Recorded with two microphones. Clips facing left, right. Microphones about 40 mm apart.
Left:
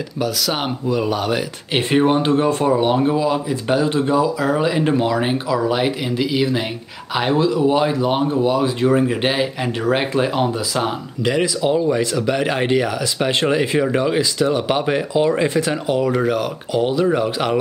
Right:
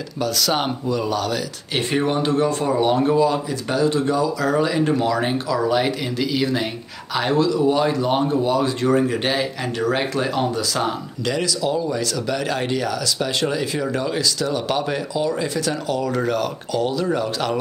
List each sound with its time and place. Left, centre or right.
0.2 s speech: centre